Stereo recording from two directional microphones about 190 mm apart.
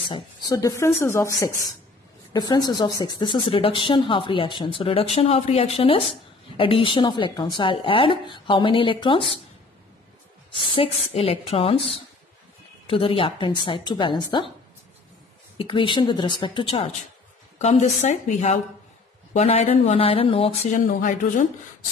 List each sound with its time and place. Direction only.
0.1 s speech: 15° left (ahead or behind)
10.5 s speech: 30° left (ahead or behind)
15.5 s speech: 25° left (ahead or behind); by 21.5 s 45° left (ahead or behind)